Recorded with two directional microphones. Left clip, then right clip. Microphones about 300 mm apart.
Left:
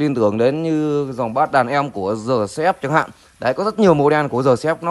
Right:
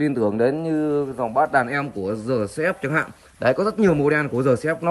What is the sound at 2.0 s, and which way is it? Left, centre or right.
A man's voice, centre.